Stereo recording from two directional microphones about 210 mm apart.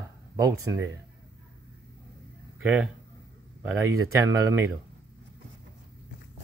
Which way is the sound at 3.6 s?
15° right (ahead or behind).